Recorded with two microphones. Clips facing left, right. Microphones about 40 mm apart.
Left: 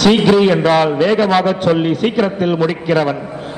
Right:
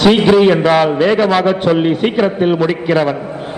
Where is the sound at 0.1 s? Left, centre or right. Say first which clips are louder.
Right 2 dB; centre.